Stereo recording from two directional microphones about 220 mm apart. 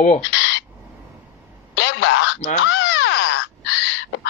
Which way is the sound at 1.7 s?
55° left (ahead or behind).